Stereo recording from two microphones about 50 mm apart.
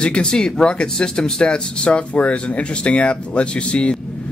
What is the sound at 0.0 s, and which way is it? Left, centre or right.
Speech, centre.